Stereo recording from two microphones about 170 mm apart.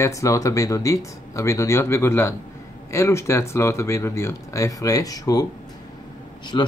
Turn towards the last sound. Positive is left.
turn(degrees=25)  # may be behind; listen again after turning